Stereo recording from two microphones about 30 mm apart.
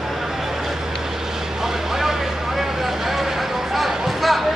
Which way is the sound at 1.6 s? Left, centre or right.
Centre.